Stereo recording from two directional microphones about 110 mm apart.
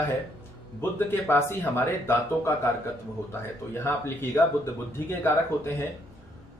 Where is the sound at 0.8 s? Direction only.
20° left (ahead or behind).